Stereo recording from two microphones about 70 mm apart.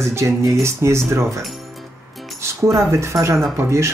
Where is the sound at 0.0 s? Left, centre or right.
Right.